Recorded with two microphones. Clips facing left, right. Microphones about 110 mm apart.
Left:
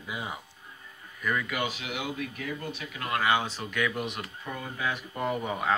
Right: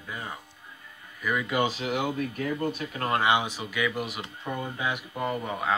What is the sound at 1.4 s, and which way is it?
Speech, 30° right (ahead or behind).